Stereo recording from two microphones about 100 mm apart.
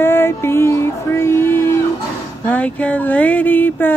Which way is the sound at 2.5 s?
15° left (ahead or behind).